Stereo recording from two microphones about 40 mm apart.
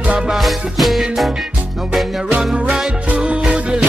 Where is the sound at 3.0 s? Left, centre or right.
Right.